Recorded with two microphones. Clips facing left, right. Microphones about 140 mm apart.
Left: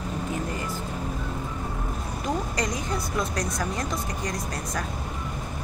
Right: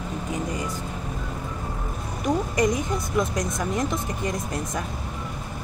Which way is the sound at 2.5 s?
20° right (ahead or behind).